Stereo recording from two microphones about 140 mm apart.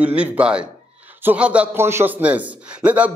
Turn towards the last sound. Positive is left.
turn(degrees=-10)  # may be behind; listen again after turning